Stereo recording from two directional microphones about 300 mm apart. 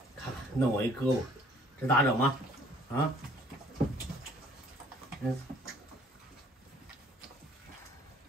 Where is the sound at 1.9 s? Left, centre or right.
Centre.